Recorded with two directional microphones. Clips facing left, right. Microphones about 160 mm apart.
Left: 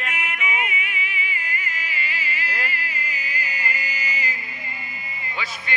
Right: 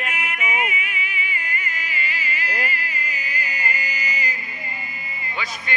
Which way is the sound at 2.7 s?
50° right (ahead or behind).